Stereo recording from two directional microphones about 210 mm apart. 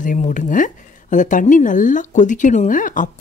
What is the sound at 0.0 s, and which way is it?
Speech, 40° left (ahead or behind).